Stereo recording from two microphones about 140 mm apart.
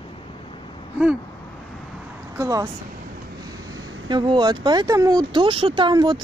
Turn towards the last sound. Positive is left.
turn(degrees=-35)  # may be behind; listen again after turning